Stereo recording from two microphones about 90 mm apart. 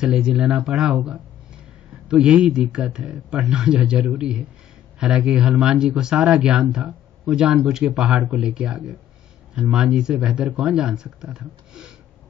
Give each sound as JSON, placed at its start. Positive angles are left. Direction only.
{"t": 0.0, "sound": "speech", "side_deg": -5}